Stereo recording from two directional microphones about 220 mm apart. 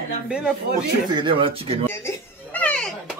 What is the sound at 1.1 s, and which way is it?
Speech, 20° right (ahead or behind).